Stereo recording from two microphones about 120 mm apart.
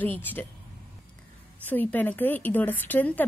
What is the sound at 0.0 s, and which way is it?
Speech, 15° left (ahead or behind).